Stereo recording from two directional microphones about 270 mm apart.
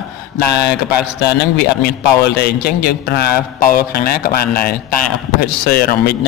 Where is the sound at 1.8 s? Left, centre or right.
Left.